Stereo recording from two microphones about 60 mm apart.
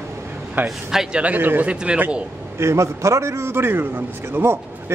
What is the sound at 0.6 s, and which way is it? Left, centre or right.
Speech, right.